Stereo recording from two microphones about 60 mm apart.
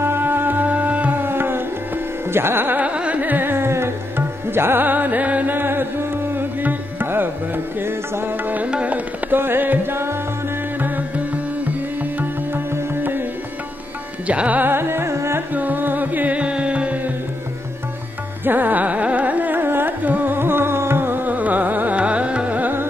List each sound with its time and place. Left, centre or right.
0.0 s music: right
1.2 s tabla: right
2.3 s carnatic music: right
2.8 s carnatic music: right
4.6 s music: right
8.6 s music: right
9.4 s carnatic music: right
11.6 s music: right
14.2 s carnatic music: right
15.5 s music: right
18.4 s carnatic music: right